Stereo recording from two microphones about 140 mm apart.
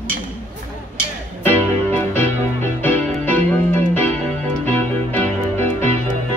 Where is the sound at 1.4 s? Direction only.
15° left (ahead or behind).